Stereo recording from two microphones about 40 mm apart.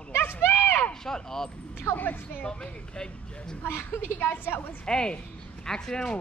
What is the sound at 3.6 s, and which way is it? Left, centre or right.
Speech, left.